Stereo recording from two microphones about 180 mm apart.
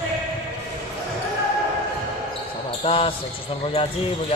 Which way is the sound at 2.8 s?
30° left (ahead or behind).